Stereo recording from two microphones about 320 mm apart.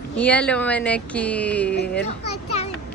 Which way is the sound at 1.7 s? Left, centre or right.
Left.